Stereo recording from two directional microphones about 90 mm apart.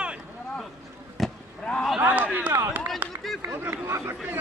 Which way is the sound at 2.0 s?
20° right (ahead or behind).